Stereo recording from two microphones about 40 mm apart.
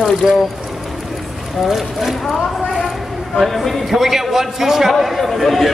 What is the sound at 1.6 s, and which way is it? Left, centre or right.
Speech, centre.